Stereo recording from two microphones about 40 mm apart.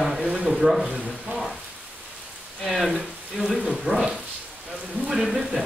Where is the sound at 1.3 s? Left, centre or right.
Right.